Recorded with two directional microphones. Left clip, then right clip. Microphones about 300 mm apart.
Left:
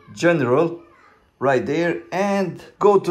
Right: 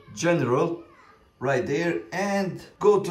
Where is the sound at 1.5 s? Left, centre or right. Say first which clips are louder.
Left 3 dB; right.